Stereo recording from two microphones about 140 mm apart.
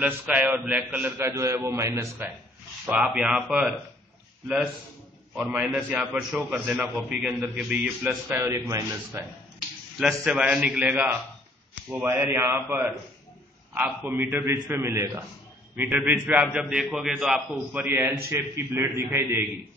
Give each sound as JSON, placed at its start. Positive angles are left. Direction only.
{"t": 0.0, "sound": "a man's voice", "side_deg": -10}
{"t": 2.9, "sound": "speech", "side_deg": -5}
{"t": 5.3, "sound": "a man's voice", "side_deg": -10}
{"t": 9.9, "sound": "a man's voice", "side_deg": -5}